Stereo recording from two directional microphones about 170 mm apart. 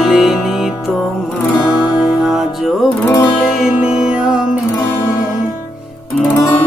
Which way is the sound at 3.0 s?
20° left (ahead or behind).